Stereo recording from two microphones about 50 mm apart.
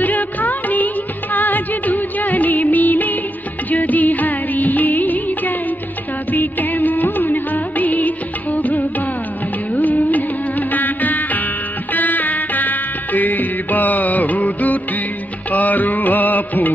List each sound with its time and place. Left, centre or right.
0.0 s music: left
6.3 s music of bollywood: left
9.8 s music: left